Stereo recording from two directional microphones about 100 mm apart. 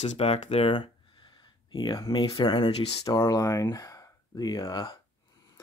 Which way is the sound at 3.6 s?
35° left (ahead or behind).